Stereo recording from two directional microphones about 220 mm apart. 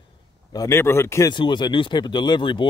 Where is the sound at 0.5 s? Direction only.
15° left (ahead or behind).